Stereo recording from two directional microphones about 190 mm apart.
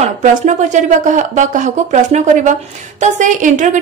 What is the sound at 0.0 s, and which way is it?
A woman's voice, 40° right (ahead or behind).